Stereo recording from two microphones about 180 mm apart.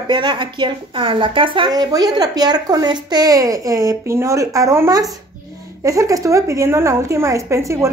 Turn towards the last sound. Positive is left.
turn(degrees=-15)  # may be behind; listen again after turning